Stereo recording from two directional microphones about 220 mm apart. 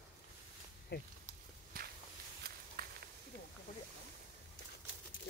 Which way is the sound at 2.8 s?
45° right (ahead or behind).